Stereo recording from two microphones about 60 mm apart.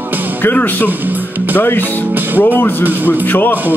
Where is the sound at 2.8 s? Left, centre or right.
Right.